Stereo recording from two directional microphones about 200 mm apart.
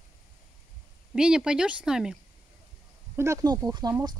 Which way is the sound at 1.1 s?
5° right (ahead or behind).